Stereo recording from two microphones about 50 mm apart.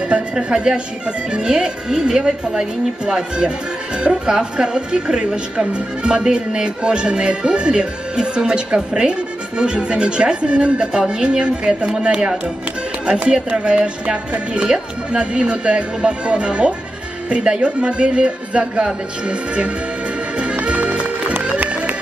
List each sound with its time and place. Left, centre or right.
0.1 s a woman's voice: right
20.3 s music: right